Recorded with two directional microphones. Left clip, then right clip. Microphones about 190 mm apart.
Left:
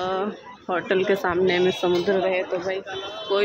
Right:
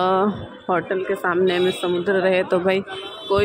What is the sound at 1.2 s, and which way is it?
Speech, centre (ahead or behind).